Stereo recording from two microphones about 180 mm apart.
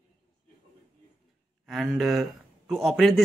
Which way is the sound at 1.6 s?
Centre (ahead or behind).